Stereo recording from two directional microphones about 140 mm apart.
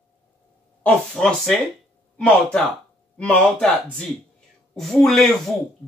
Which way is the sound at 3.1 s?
10° left (ahead or behind).